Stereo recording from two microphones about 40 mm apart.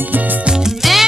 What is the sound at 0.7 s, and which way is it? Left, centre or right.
Music, centre.